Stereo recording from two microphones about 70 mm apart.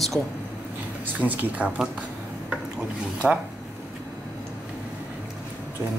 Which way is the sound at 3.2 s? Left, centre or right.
Centre.